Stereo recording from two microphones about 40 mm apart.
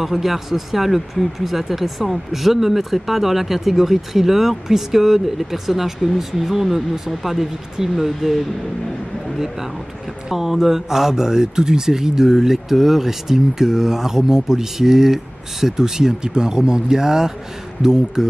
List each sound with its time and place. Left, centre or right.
0.0 s speech: centre
10.3 s speech: centre